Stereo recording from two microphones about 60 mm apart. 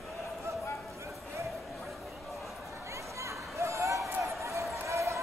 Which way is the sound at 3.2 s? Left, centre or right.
Right.